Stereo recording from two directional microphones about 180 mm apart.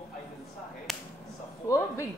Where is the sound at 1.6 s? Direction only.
15° left (ahead or behind).